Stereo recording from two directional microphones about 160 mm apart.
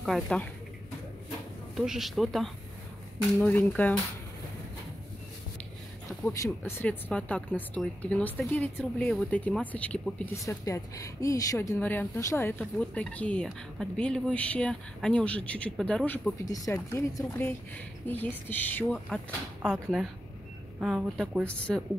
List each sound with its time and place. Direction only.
0.0 s speech: 5° left (ahead or behind)
1.8 s a woman's voice: centre (ahead or behind)
6.2 s a woman's voice: 15° left (ahead or behind)
10.3 s a woman's voice: 20° left (ahead or behind)
16.4 s a woman's voice: 20° left (ahead or behind); by 21.5 s 5° right (ahead or behind)
21.5 s a woman's voice: 5° left (ahead or behind)